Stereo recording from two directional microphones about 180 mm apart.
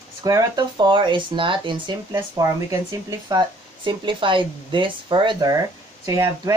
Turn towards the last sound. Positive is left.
turn(degrees=-20)  # may be behind; listen again after turning